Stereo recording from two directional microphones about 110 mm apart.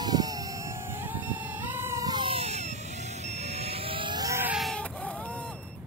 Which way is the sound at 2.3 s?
80° right.